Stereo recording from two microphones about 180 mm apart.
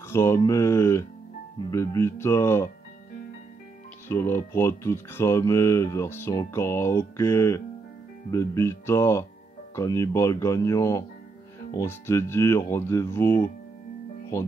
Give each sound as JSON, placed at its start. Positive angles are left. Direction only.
{"t": 0.1, "sound": "speech", "side_deg": 15}
{"t": 4.1, "sound": "speech", "side_deg": 15}